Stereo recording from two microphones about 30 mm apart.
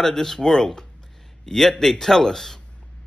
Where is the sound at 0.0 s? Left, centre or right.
Centre.